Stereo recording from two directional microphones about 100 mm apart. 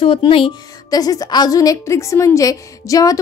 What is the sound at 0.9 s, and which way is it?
A woman's voice, 40° left (ahead or behind).